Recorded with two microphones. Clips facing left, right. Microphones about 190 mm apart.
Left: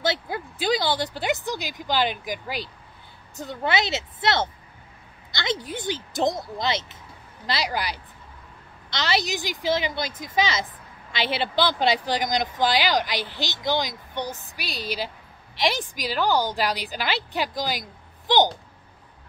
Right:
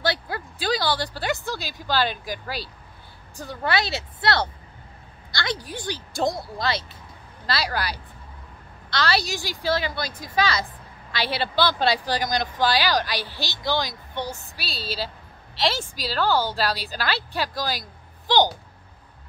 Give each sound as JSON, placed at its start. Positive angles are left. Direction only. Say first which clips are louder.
{"t": 0.0, "sound": "a woman's voice", "louder": "even", "side_deg": 20}